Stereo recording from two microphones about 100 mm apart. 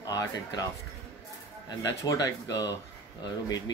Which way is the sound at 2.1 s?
35° left (ahead or behind).